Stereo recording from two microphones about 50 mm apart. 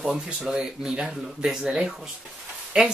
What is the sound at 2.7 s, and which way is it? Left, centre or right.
Speech, centre.